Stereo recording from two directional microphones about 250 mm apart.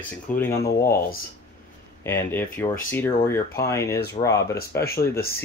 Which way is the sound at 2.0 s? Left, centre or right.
Centre.